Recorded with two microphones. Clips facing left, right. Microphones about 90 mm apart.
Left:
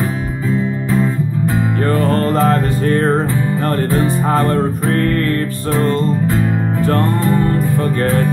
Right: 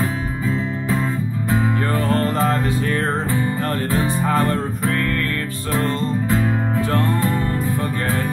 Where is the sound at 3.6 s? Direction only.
40° left (ahead or behind).